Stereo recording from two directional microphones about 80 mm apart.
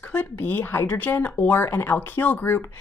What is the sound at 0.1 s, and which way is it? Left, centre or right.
Speech, left.